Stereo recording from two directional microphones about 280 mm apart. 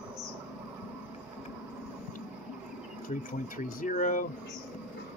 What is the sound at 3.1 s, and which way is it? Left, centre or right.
Speech, left.